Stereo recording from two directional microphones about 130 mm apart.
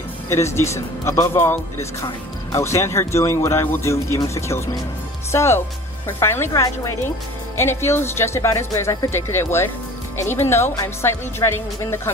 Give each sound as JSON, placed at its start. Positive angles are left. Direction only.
{"t": 0.3, "sound": "speech", "side_deg": 20}